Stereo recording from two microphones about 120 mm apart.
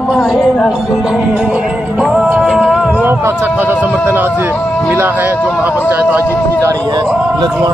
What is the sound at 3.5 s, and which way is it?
Speech, 15° right (ahead or behind).